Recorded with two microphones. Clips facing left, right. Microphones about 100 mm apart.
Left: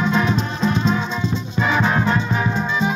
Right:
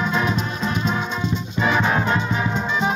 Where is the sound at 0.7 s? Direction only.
15° right (ahead or behind).